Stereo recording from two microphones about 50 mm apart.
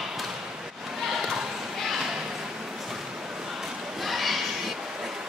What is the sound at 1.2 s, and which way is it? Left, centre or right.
Basketball bounce, centre.